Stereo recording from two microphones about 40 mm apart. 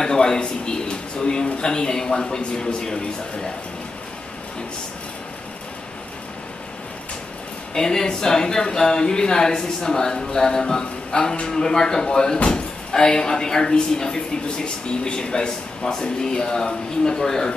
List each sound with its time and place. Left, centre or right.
0.0 s a man's voice: centre
7.7 s speech: centre